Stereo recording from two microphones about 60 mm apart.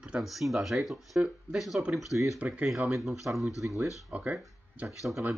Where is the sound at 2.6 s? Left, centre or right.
Centre.